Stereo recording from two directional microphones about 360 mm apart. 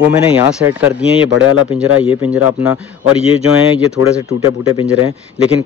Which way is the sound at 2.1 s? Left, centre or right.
Centre.